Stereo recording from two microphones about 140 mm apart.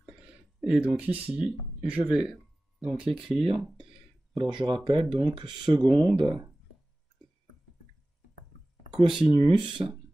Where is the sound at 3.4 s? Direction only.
35° right (ahead or behind).